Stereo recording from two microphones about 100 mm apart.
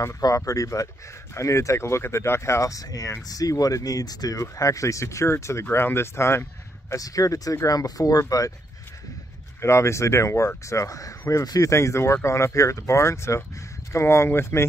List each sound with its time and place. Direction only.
0.0 s speech: 35° left (ahead or behind)
6.9 s speech: 35° left (ahead or behind)
9.6 s speech: 30° left (ahead or behind)